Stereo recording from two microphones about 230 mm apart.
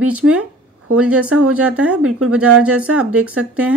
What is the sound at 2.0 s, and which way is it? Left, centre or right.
Speech, right.